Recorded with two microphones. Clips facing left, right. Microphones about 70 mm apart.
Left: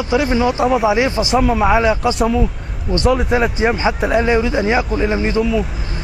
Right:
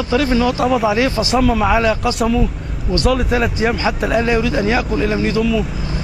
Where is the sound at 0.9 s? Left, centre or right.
Left.